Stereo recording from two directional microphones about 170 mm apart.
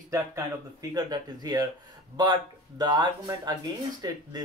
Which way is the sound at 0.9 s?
25° right (ahead or behind).